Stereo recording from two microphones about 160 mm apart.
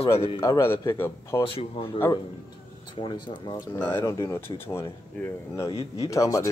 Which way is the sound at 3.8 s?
15° left (ahead or behind).